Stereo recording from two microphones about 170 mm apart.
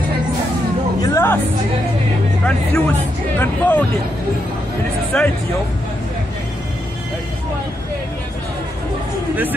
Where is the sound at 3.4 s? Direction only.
10° left (ahead or behind).